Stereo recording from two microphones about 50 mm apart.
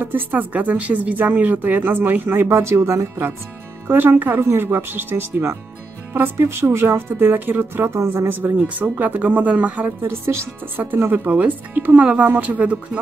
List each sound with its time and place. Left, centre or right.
0.0 s speech: right
2.4 s speech: right
3.8 s speech: right
10.0 s speech: right
11.1 s speech: right
12.0 s speech: right